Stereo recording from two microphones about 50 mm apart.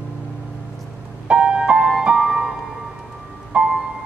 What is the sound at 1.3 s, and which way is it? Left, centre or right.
Music, right.